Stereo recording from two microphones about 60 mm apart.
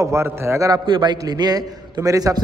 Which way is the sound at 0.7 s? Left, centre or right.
Right.